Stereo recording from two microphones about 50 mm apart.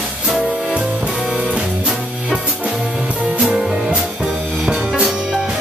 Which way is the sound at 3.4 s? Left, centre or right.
Right.